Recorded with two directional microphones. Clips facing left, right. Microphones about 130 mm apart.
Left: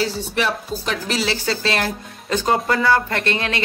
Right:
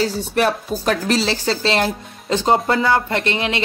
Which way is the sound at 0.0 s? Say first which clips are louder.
Right 4 dB; 45° right (ahead or behind).